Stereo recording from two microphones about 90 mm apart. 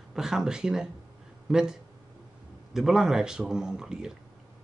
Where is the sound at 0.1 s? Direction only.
5° right (ahead or behind).